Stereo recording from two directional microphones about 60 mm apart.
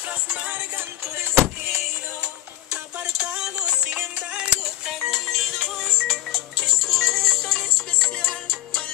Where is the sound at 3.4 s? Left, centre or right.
Centre.